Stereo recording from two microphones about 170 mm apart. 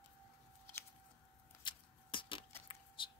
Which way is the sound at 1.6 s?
30° left (ahead or behind).